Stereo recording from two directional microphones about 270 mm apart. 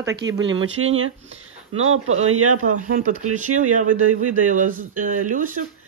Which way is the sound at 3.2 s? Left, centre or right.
Right.